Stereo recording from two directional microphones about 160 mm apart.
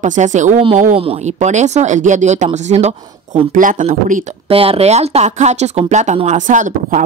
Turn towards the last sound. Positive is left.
turn(degrees=-50)  # may be behind; listen again after turning